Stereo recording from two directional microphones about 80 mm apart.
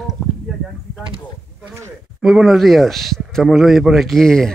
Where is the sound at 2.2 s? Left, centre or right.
Centre.